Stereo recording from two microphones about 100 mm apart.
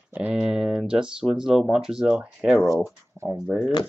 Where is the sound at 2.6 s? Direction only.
25° right (ahead or behind).